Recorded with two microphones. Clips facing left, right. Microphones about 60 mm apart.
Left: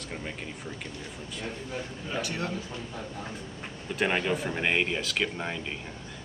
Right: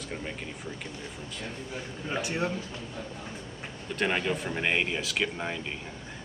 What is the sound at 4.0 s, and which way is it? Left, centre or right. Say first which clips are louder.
Speech: left 1 dB; centre.